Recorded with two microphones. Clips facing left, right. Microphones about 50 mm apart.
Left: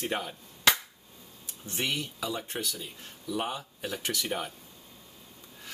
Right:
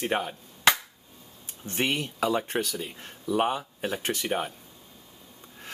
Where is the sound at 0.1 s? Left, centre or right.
Right.